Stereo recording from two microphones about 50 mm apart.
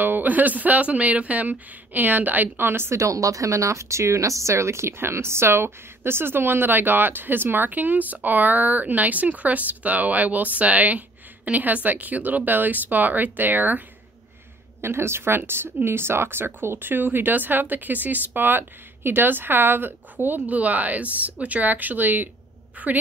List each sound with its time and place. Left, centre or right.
0.0 s speech: right
3.0 s speech: right
14.8 s speech: right